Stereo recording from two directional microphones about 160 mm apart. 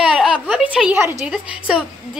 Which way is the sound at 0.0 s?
5° right (ahead or behind).